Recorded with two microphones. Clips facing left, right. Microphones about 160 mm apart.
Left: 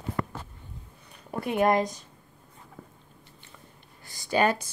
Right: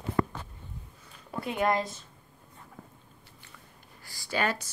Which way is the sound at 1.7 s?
20° left (ahead or behind).